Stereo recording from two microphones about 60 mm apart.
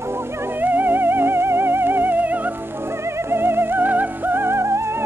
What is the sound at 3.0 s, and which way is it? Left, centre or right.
Music, right.